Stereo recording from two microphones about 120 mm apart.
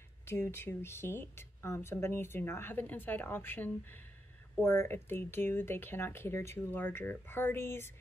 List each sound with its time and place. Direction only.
0.3 s speech: 20° left (ahead or behind)